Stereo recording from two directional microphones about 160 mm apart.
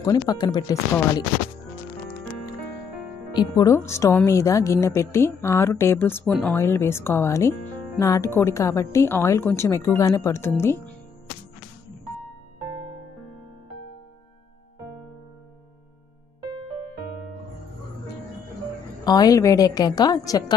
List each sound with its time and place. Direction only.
0.0 s a woman's voice: 25° left (ahead or behind)
3.3 s a woman's voice: 20° left (ahead or behind)
19.0 s a woman's voice: 25° left (ahead or behind)